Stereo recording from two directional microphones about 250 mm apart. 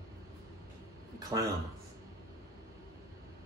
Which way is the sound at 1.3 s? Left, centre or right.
Centre.